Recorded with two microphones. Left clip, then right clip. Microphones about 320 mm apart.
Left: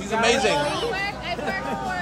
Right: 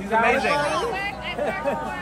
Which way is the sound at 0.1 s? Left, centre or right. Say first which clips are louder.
Right 1 dB; centre.